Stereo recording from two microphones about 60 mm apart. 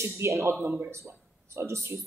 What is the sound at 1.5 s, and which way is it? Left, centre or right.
Speech, right.